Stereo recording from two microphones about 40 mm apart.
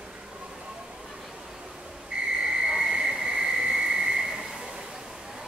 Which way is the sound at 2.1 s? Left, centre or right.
Right.